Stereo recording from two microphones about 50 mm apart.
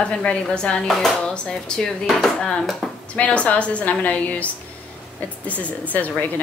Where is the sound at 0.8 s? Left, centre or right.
Centre.